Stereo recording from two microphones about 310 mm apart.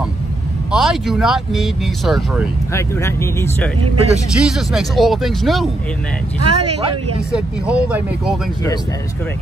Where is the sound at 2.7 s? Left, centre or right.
Centre.